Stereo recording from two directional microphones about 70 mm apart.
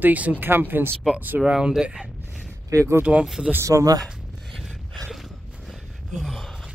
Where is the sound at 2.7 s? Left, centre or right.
Right.